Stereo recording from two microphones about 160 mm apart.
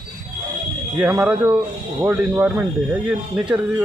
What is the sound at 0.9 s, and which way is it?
Speech, 10° right (ahead or behind).